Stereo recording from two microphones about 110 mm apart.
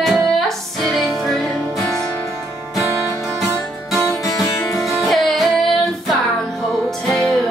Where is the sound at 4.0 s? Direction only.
30° left (ahead or behind).